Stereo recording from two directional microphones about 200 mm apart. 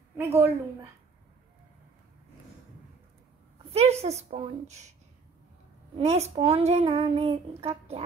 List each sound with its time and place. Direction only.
0.1 s a woman's voice: 10° right (ahead or behind)
3.7 s speech: 30° right (ahead or behind)
5.9 s speech: 35° right (ahead or behind)